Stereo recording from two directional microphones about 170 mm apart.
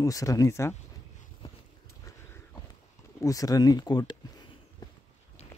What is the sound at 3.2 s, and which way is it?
Speech, 20° left (ahead or behind).